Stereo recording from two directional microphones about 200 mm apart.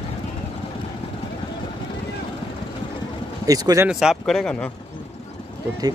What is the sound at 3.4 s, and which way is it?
Speech, 20° right (ahead or behind).